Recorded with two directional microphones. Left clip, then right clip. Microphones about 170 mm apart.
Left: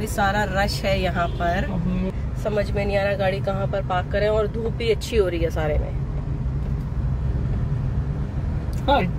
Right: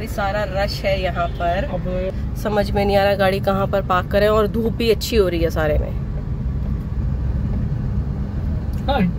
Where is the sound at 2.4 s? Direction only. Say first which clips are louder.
Right 4 dB; 40° right (ahead or behind).